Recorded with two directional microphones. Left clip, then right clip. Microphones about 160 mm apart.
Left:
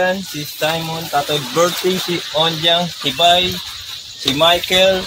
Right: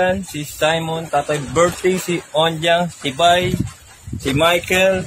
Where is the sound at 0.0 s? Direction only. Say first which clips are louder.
Left 1 dB; 20° right (ahead or behind).